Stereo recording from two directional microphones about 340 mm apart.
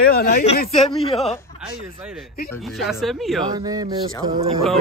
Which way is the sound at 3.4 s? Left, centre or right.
Centre.